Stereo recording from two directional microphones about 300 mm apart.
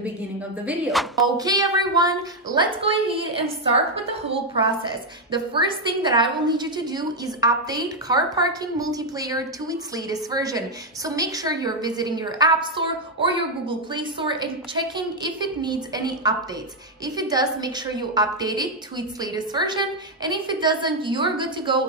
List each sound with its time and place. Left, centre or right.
0.7 s music: centre
1.2 s a woman's voice: centre